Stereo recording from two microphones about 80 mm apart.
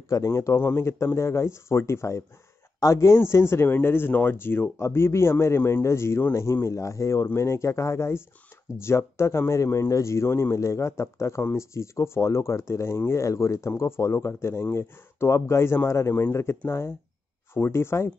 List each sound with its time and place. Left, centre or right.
0.1 s speech: left
0.6 s speech: left